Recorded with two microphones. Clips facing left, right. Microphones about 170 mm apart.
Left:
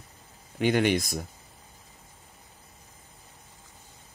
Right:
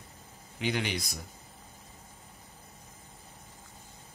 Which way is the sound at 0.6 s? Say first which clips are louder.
Left 9 dB; 50° left (ahead or behind).